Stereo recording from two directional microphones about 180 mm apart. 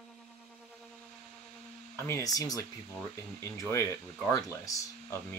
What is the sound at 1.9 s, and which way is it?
Speech, 15° left (ahead or behind).